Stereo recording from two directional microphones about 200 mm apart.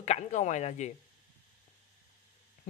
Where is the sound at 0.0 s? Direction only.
35° left (ahead or behind).